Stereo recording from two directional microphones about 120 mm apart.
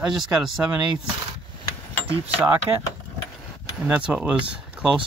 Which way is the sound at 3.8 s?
5° right (ahead or behind).